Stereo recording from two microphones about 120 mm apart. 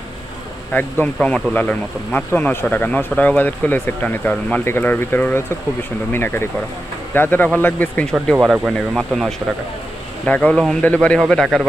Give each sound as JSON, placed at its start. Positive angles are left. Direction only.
{"t": 0.7, "sound": "speech", "side_deg": 15}
{"t": 8.1, "sound": "speech", "side_deg": 0}